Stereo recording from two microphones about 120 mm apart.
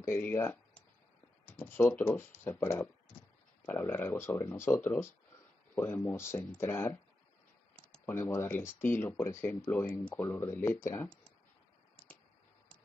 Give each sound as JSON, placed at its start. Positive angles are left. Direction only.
{"t": 0.0, "sound": "speech", "side_deg": 20}
{"t": 8.0, "sound": "speech", "side_deg": 20}